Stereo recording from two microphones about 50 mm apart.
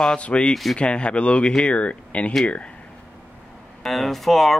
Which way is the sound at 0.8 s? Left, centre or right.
Left.